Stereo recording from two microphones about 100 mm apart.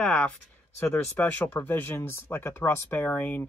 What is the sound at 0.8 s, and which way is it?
Speech, 20° left (ahead or behind).